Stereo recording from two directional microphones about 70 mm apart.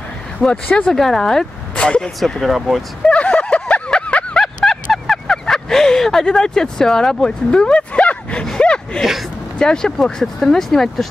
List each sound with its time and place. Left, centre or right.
0.7 s speech: centre
0.9 s speech: centre
3.1 s a sound: centre
8.5 s gasp: centre
9.6 s speech: centre